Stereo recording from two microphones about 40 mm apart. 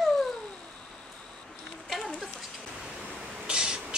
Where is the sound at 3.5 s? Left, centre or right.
Right.